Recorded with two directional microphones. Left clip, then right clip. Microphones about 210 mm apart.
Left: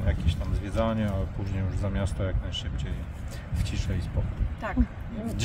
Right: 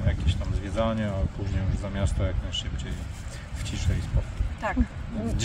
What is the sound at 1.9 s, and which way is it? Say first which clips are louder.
Speech: right 2 dB; 20° left (ahead or behind).